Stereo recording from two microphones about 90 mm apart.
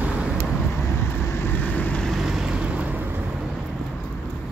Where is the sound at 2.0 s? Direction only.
5° right (ahead or behind).